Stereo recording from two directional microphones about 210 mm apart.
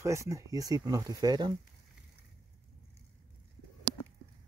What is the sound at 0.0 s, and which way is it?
Speech, 15° right (ahead or behind).